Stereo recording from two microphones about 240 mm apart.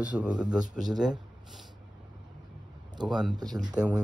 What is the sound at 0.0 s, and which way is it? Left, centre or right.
Speech, centre.